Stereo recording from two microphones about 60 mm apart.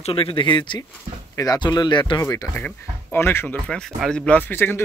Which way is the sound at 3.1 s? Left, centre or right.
Left.